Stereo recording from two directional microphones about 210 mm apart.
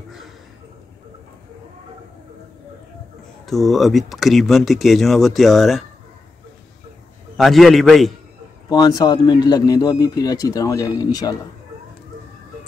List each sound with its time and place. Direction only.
3.4 s speech: centre (ahead or behind)
7.3 s speech: centre (ahead or behind)
8.6 s a man's voice: 20° left (ahead or behind)